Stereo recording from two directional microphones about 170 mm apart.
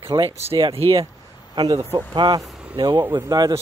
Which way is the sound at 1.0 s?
25° right (ahead or behind).